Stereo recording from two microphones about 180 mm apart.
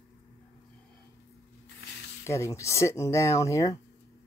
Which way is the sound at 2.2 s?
15° left (ahead or behind).